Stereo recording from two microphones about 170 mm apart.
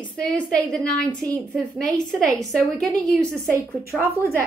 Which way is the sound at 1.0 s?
20° right (ahead or behind).